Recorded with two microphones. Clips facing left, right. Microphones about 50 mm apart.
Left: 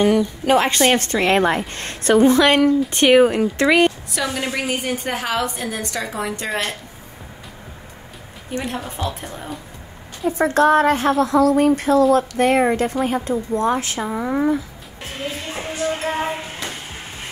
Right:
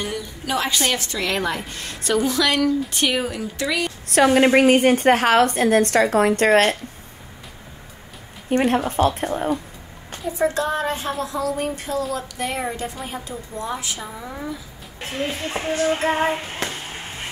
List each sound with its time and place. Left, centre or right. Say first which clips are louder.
0.0 s a woman's voice: left 12 dB; left
4.1 s a woman's voice: right 9 dB; right
8.5 s a woman's voice: right 7 dB; right
10.3 s a woman's voice: left 7 dB; left
15.9 s music: right 3 dB; right